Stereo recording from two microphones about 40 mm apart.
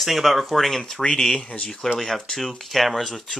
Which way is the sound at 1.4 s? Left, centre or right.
Left.